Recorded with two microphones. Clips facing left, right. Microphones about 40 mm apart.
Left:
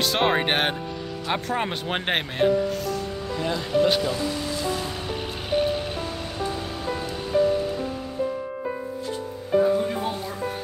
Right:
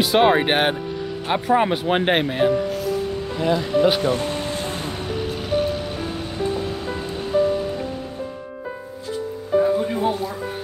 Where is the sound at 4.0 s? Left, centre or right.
Right.